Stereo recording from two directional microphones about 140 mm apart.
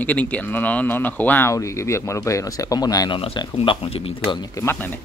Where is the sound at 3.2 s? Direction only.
40° left (ahead or behind).